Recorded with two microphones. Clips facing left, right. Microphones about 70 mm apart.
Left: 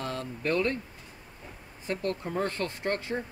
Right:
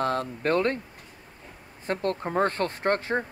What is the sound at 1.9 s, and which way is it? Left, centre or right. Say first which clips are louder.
Speech: right 4 dB; right.